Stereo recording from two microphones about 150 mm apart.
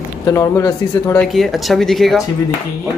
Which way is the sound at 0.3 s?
20° left (ahead or behind).